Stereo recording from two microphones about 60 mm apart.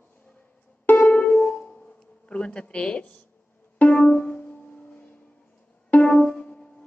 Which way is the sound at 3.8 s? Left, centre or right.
Left.